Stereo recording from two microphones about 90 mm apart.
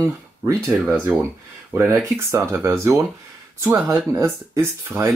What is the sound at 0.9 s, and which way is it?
Speech, 25° right (ahead or behind).